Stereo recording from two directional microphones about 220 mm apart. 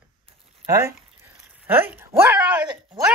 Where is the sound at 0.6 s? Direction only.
10° right (ahead or behind).